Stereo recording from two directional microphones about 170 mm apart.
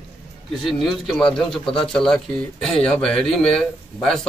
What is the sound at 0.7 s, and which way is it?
Speech, centre (ahead or behind).